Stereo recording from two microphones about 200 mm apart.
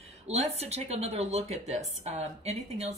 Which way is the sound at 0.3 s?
30° right (ahead or behind).